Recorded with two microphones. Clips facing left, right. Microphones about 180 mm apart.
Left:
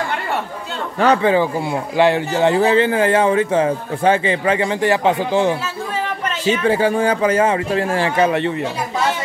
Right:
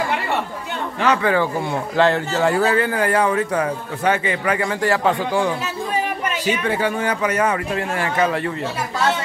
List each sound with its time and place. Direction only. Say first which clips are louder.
0.9 s speech: left 4 dB; 35° left (ahead or behind)
1.2 s speech: left 3 dB; 15° left (ahead or behind)